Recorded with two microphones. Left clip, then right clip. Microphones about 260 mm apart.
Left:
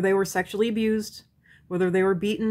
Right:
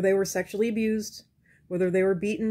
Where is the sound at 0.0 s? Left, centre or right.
Centre.